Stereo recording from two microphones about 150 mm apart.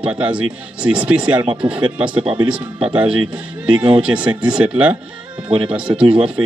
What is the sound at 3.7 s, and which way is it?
Speech, 35° right (ahead or behind).